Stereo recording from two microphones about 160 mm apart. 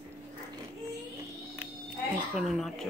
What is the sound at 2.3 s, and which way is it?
Speech, centre (ahead or behind).